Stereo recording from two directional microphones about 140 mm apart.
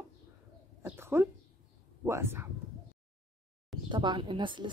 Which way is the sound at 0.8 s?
15° right (ahead or behind).